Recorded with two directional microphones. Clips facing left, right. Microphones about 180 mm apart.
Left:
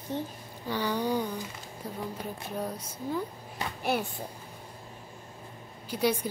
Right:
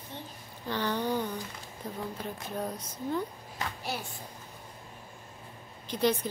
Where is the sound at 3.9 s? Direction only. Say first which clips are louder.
Left 11 dB; 55° left (ahead or behind).